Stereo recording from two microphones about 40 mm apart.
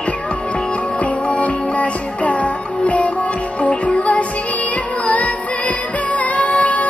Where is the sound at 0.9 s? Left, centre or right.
Left.